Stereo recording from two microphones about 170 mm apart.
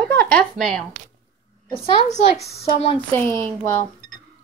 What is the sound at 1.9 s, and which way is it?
Speech, 40° left (ahead or behind).